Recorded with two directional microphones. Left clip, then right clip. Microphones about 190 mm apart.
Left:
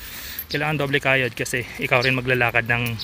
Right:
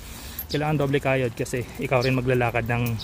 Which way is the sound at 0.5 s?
5° right (ahead or behind).